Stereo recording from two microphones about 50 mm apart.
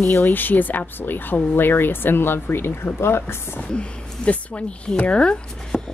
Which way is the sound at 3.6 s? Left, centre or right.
Left.